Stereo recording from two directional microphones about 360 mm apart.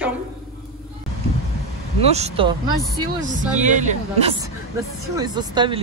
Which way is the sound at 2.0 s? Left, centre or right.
Centre.